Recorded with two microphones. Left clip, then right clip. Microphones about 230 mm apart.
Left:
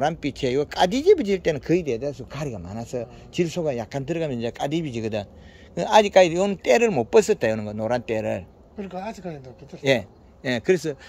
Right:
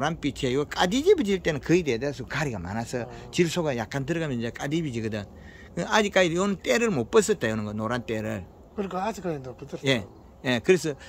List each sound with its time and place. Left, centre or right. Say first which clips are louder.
0.0 s speech: left 4 dB; centre
8.7 s speech: right 3 dB; centre
9.8 s a man's voice: left 5 dB; centre